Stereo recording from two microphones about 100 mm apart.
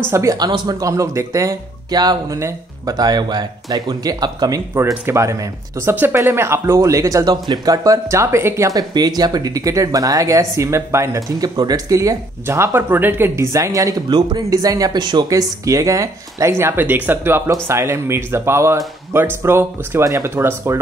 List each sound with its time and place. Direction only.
0.1 s speech: 30° right (ahead or behind)
0.4 s speech: 40° right (ahead or behind)
5.0 s speech: 30° right (ahead or behind); by 15.2 s 45° right (ahead or behind)
15.2 s speech: 35° right (ahead or behind)